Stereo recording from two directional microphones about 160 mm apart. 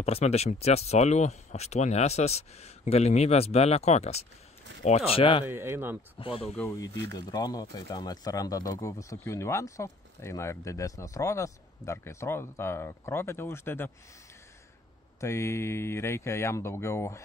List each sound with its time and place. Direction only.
0.0 s speech: 40° left (ahead or behind)
5.4 s speech: 15° right (ahead or behind)
6.1 s speech: 35° left (ahead or behind)
7.2 s speech: 25° left (ahead or behind)
15.1 s speech: 15° left (ahead or behind)